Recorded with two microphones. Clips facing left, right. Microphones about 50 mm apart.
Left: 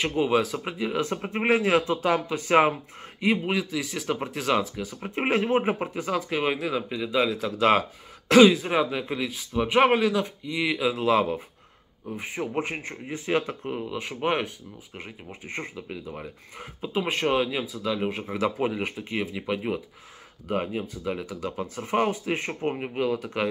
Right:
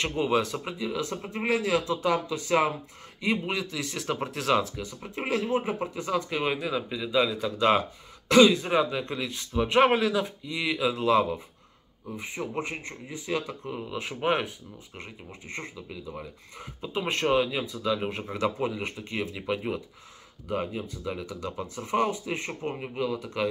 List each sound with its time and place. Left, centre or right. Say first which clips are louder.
0.0 s speech: left 3 dB; centre
0.7 s a man's voice: left 4 dB; left
3.4 s speech: left 4 dB; centre
5.0 s a man's voice: left 4 dB; left
6.0 s speech: left 2 dB; centre
8.3 s speech: left 3 dB; left
8.5 s speech: even; centre
10.9 s speech: even; left
13.8 s speech: right 1 dB; centre
15.4 s speech: left 4 dB; left
16.9 s speech: even; centre
18.6 s speech: left 3 dB; left
20.4 s speech: left 3 dB; centre